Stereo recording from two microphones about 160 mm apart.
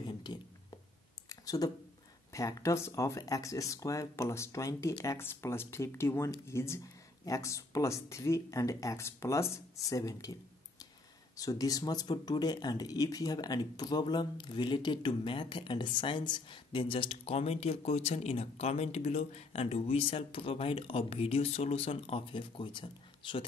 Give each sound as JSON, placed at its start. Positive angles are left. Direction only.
{"t": 0.0, "sound": "a sound", "side_deg": 30}
{"t": 2.3, "sound": "speech", "side_deg": 20}
{"t": 11.3, "sound": "speech", "side_deg": 20}